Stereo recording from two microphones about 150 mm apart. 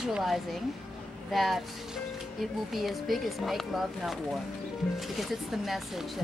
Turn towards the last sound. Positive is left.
turn(degrees=0)  # may be behind; listen again after turning